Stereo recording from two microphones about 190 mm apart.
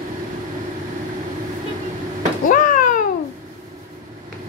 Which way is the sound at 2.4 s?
45° left (ahead or behind).